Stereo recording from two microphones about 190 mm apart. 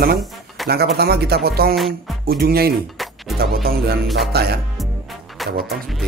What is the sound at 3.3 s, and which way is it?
Speech, 55° right (ahead or behind).